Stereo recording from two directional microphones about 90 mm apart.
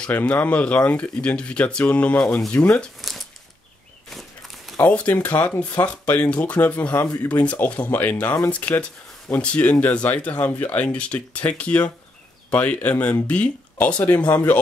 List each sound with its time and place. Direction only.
0.0 s speech: 15° left (ahead or behind)
4.1 s a sound: centre (ahead or behind)
4.8 s a man's voice: 15° left (ahead or behind)